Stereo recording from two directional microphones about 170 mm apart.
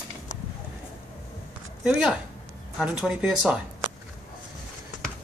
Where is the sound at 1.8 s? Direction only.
5° right (ahead or behind).